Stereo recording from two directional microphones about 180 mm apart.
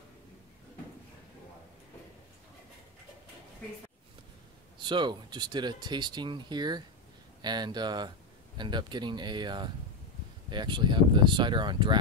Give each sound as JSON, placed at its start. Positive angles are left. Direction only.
{"t": 4.8, "sound": "speech", "side_deg": -25}